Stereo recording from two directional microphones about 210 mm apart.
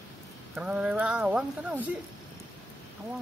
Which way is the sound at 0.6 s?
5° right (ahead or behind).